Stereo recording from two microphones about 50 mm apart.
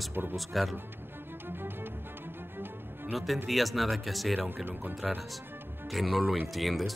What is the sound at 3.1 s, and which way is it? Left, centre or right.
Speech, centre.